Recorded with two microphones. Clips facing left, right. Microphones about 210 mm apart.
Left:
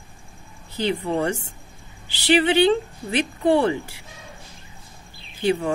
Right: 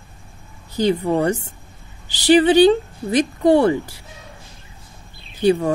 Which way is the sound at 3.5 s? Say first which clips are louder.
Right 4 dB; 45° right (ahead or behind).